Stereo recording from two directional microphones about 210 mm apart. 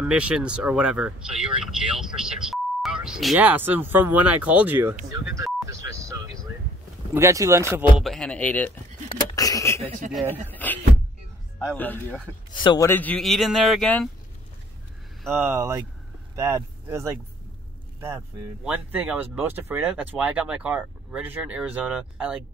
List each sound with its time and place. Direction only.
0.0 s speech: 5° right (ahead or behind)
5.1 s vehicle: 15° right (ahead or behind)
7.2 s speech: 15° right (ahead or behind)
8.0 s speech: centre (ahead or behind)
9.1 s a sound: 15° left (ahead or behind)
10.1 s speech: 10° right (ahead or behind)
10.5 s speech: 10° left (ahead or behind)
12.5 s speech: 20° left (ahead or behind); by 14.0 s 5° left (ahead or behind)
15.3 s speech: 10° right (ahead or behind)